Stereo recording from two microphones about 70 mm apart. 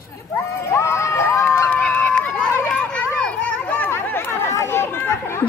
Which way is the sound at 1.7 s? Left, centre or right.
Left.